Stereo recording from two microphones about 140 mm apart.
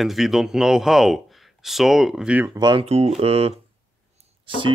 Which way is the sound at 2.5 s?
30° right (ahead or behind).